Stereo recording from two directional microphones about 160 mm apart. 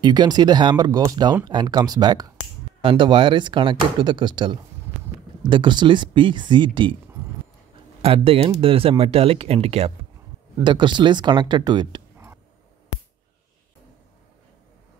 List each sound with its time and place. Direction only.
0.0 s speech: 25° right (ahead or behind)
8.0 s speech: 35° right (ahead or behind)